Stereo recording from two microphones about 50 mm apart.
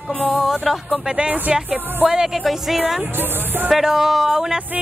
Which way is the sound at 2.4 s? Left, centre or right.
Centre.